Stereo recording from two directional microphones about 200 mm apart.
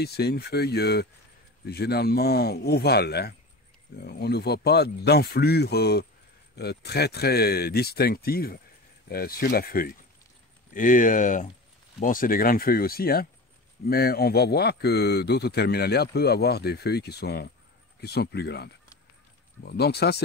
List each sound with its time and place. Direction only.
0.0 s a man's voice: 55° left (ahead or behind)